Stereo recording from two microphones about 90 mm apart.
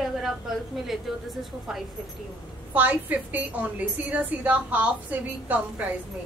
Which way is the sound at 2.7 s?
20° right (ahead or behind).